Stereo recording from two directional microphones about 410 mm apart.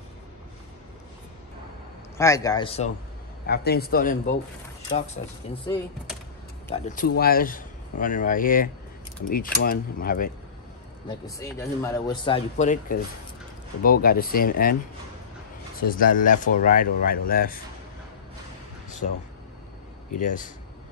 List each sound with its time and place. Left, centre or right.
2.1 s speech: centre
11.2 s speech: centre
15.8 s speech: left
20.1 s speech: centre